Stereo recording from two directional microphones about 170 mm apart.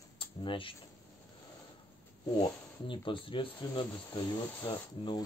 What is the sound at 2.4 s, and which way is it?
Speech, 25° left (ahead or behind).